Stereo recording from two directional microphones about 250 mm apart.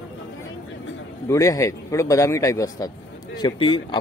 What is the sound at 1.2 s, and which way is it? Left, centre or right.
Speech, centre.